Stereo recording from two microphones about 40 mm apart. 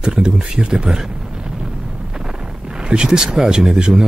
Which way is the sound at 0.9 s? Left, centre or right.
Centre.